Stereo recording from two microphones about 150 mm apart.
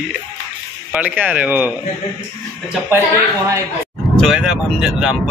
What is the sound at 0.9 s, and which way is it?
Speech, 10° right (ahead or behind).